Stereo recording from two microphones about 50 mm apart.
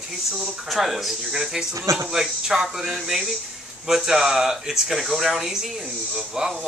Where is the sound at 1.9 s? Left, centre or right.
Right.